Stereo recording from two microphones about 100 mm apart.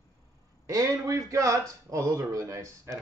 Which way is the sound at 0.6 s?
35° right (ahead or behind).